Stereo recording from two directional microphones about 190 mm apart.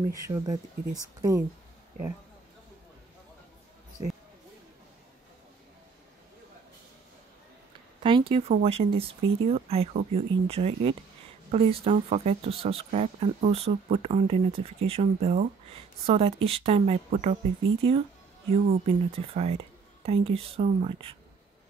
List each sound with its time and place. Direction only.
0.1 s speech: 20° right (ahead or behind)
8.0 s speech: 30° right (ahead or behind)